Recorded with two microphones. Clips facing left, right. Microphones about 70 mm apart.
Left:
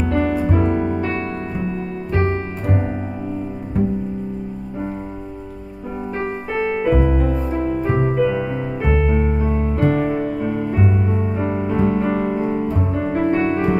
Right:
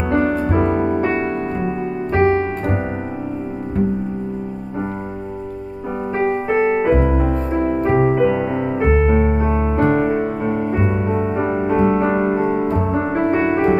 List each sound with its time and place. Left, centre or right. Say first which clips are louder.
0.1 s music: right 3 dB; right
6.2 s music: right 7 dB; right
9.4 s music: right 3 dB; right
9.8 s music: even; right